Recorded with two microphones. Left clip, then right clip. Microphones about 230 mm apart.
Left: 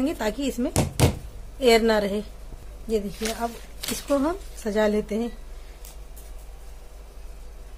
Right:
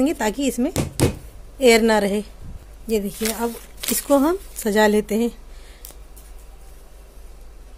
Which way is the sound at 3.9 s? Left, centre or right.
Right.